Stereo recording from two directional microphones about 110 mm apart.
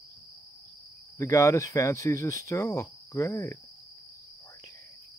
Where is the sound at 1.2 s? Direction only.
30° left (ahead or behind).